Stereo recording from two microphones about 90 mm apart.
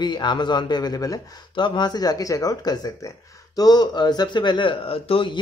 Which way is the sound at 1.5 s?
60° left (ahead or behind).